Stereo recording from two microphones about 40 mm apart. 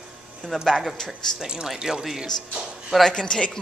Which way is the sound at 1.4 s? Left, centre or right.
Centre.